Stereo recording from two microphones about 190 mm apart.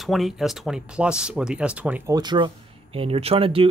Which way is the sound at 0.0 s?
Centre (ahead or behind).